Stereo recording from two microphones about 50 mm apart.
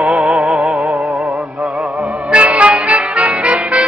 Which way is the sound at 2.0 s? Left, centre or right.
Right.